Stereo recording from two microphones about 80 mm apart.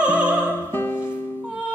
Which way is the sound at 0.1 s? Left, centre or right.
Centre.